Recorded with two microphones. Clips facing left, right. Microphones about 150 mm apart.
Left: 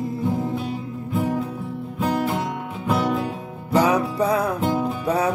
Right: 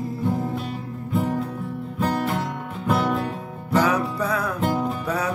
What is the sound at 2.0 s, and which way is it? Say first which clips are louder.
Music: left 1 dB; 5° left (ahead or behind).